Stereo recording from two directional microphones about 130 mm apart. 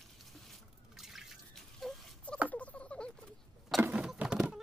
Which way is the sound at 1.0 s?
Centre (ahead or behind).